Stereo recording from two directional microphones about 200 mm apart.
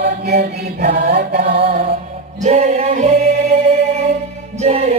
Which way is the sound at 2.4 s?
35° right (ahead or behind).